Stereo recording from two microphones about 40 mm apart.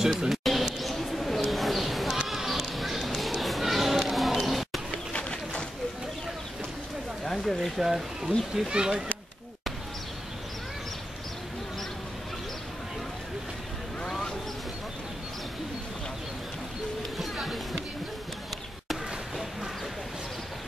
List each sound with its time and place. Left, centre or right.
0.0 s speech: centre
0.4 s a sound: centre
0.7 s bird: centre
2.2 s music: centre
5.1 s bird: left
7.2 s a sound: centre
7.8 s speech: centre
8.6 s speech: right
14.0 s a sound: centre
17.2 s music: centre